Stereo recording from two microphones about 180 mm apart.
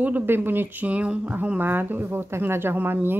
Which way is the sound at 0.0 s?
10° right (ahead or behind).